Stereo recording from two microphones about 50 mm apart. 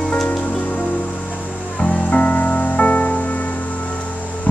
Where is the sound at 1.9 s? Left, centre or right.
Left.